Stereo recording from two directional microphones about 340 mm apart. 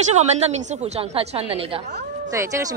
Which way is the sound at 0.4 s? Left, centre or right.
Centre.